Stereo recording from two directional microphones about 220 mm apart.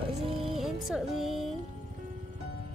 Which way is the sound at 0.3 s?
25° right (ahead or behind).